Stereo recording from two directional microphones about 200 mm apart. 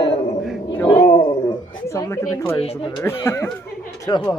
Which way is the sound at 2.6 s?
25° left (ahead or behind).